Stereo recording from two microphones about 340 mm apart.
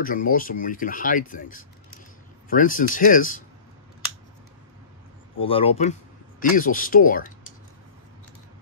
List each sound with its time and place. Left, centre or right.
0.0 s speech: left
5.4 s speech: centre